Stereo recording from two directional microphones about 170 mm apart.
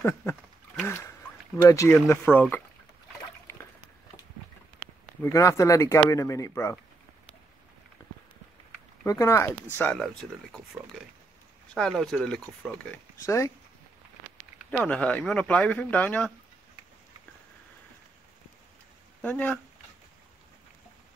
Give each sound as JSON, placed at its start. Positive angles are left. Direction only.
{"t": 0.0, "sound": "a sound", "side_deg": 15}
{"t": 1.6, "sound": "speech", "side_deg": 20}
{"t": 3.5, "sound": "dog", "side_deg": 15}
{"t": 5.2, "sound": "speech", "side_deg": 15}
{"t": 8.0, "sound": "run", "side_deg": 20}
{"t": 9.0, "sound": "speech", "side_deg": 15}
{"t": 13.2, "sound": "speech", "side_deg": 15}
{"t": 14.7, "sound": "speech", "side_deg": 10}
{"t": 19.2, "sound": "speech", "side_deg": 10}